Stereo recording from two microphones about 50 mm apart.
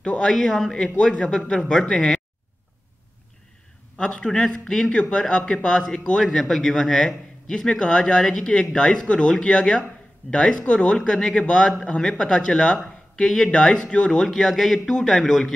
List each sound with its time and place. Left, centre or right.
0.0 s a man's voice: centre
4.0 s a man's voice: centre
6.2 s a man's voice: centre
14.5 s a man's voice: centre